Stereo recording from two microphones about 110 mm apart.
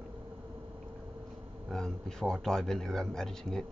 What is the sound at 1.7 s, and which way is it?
A man's voice, 5° left (ahead or behind).